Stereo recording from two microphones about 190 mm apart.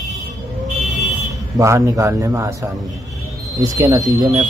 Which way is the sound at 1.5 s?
15° right (ahead or behind).